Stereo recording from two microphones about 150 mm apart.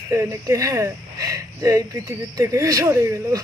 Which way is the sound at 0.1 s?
20° right (ahead or behind).